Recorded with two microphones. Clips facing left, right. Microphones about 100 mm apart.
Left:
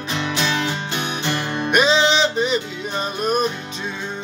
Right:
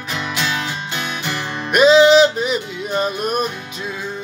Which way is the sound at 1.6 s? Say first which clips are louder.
Right 7 dB; 5° right (ahead or behind).